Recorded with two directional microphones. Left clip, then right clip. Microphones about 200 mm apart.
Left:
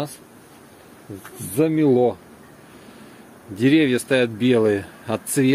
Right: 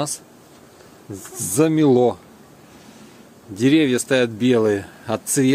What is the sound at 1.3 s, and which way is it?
Speech, 20° right (ahead or behind).